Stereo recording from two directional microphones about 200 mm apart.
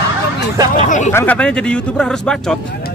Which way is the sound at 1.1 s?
10° left (ahead or behind).